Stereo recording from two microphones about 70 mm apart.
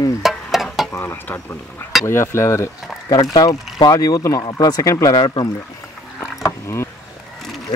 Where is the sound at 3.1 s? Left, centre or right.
Left.